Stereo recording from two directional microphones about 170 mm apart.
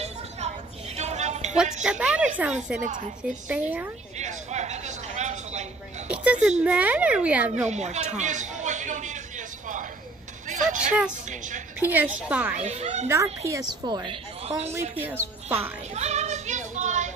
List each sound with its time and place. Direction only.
0.0 s a sound: 40° right (ahead or behind)
1.8 s speech: 5° right (ahead or behind)
2.8 s a woman's voice: 45° right (ahead or behind)
3.2 s speech: 5° right (ahead or behind)
4.2 s a sound: 45° right (ahead or behind)
6.0 s a sound: 5° right (ahead or behind)
6.6 s speech: 10° right (ahead or behind)
7.6 s a man's voice: 40° right (ahead or behind)
10.5 s a woman's voice: 50° right (ahead or behind)
11.8 s speech: 10° right (ahead or behind)
12.5 s a child's voice: 40° right (ahead or behind)
13.5 s a woman's voice: 20° right (ahead or behind)
14.7 s speech: 15° right (ahead or behind)
15.6 s music: 40° right (ahead or behind)